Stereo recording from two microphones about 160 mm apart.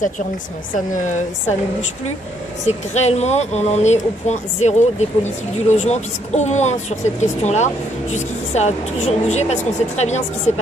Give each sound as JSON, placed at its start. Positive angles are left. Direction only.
{"t": 0.9, "sound": "speech", "side_deg": 50}
{"t": 2.6, "sound": "speech", "side_deg": 45}